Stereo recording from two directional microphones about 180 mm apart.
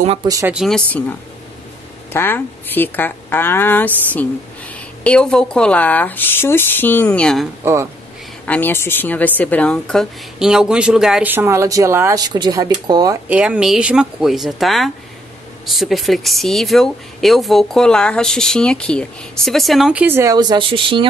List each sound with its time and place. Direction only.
0.3 s speech: 15° right (ahead or behind)
0.6 s speech: 5° left (ahead or behind)
2.1 s speech: 10° left (ahead or behind)
7.6 s speech: 15° right (ahead or behind)
8.5 s speech: 10° left (ahead or behind); by 13.2 s 20° right (ahead or behind)
13.3 s speech: 5° right (ahead or behind); by 21.1 s 30° right (ahead or behind)